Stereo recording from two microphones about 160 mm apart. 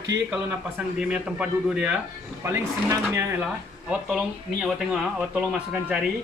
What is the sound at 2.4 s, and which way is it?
Speech, 15° right (ahead or behind).